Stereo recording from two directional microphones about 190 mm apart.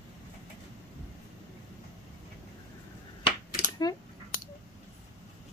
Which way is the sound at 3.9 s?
20° left (ahead or behind).